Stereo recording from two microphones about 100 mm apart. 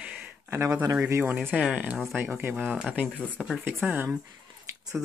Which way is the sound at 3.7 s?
15° right (ahead or behind).